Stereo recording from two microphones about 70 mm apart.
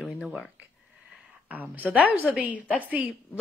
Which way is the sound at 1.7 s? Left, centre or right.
Right.